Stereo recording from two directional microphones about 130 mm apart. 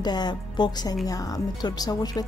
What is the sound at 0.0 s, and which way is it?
A woman's voice, 35° left (ahead or behind).